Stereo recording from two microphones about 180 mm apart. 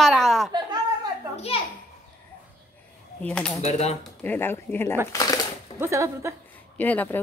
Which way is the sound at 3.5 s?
35° left (ahead or behind).